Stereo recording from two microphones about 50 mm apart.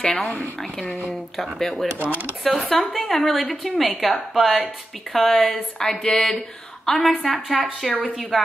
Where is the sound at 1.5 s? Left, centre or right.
Centre.